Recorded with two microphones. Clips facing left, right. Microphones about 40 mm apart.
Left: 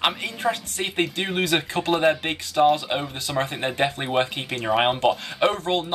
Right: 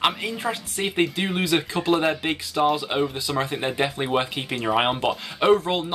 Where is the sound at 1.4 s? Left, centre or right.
Left.